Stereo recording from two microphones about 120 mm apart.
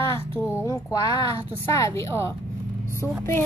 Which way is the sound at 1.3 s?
25° left (ahead or behind).